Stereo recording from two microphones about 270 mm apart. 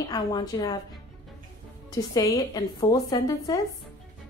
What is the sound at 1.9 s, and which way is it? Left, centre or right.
A woman's voice, centre.